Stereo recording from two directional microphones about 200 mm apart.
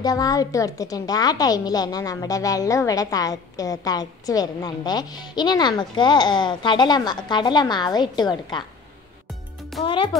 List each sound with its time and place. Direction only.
0.0 s a woman's voice: 20° left (ahead or behind)
9.8 s a woman's voice: 25° left (ahead or behind)